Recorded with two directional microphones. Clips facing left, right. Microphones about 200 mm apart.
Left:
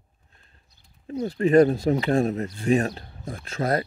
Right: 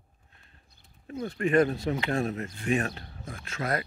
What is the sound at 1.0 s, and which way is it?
Speech, 35° left (ahead or behind).